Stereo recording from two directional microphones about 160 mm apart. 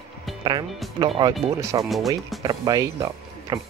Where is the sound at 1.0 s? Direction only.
30° right (ahead or behind).